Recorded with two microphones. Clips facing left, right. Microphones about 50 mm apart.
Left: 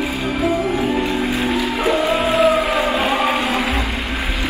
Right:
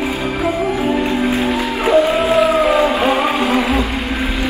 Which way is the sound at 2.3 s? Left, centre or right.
Centre.